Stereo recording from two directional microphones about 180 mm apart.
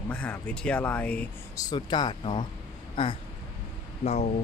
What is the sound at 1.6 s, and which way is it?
Speech, 25° left (ahead or behind).